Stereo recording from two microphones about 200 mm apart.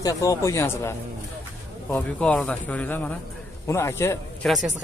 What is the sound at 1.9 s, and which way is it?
A man's voice, 5° left (ahead or behind).